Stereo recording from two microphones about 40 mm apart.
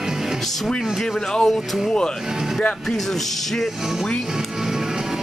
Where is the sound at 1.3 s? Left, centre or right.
Centre.